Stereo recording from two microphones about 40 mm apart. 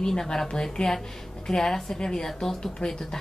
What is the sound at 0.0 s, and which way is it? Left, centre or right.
A woman's voice, centre.